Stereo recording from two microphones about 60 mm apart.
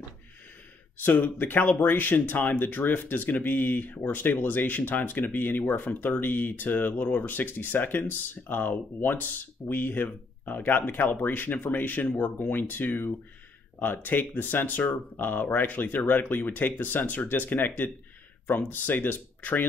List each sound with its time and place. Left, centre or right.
1.0 s speech: left